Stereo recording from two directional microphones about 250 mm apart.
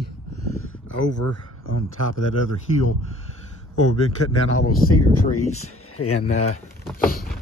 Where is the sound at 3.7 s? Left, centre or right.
Left.